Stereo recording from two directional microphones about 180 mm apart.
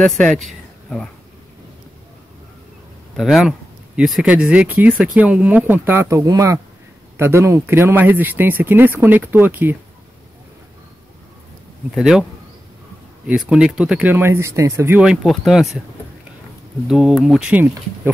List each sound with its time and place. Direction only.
0.0 s speech: 5° left (ahead or behind)
3.2 s speech: centre (ahead or behind)
11.9 s speech: centre (ahead or behind)
13.5 s speech: 5° right (ahead or behind)
16.8 s speech: centre (ahead or behind)